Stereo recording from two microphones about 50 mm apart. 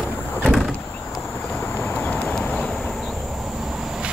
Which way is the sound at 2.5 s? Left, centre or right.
Centre.